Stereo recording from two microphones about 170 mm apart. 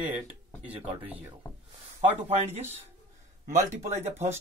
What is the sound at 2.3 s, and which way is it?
Speech, 40° right (ahead or behind).